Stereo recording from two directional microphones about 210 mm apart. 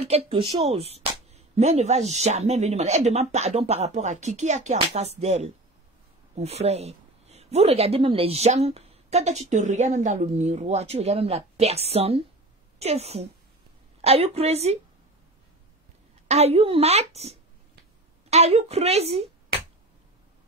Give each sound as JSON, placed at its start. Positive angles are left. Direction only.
{"t": 0.0, "sound": "a woman's voice", "side_deg": -25}
{"t": 16.3, "sound": "a woman's voice", "side_deg": -30}